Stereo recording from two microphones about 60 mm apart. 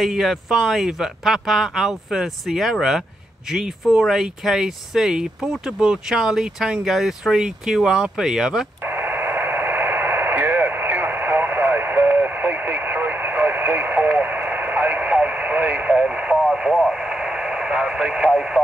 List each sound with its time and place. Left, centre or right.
0.0 s speech: centre
8.8 s radio: right; by 18.6 s centre